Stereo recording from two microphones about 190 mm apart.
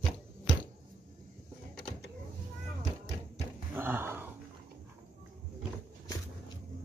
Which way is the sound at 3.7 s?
10° right (ahead or behind).